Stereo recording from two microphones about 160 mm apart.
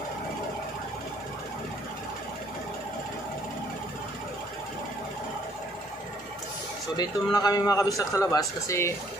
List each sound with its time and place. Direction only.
7.0 s a man's voice: 25° left (ahead or behind)